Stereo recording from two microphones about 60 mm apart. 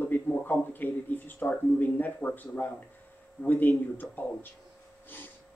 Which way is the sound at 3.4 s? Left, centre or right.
Left.